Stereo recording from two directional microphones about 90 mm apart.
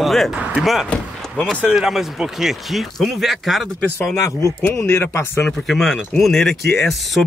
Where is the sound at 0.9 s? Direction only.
10° left (ahead or behind).